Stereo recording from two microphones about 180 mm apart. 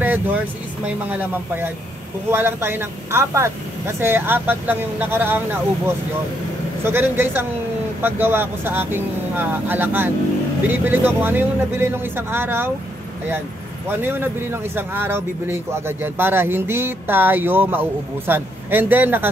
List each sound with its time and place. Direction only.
0.0 s vehicle: 10° right (ahead or behind)
0.8 s speech: 10° right (ahead or behind)
13.8 s speech: 10° right (ahead or behind)